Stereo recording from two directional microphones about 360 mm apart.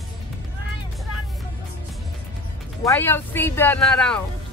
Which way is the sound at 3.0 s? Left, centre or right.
Centre.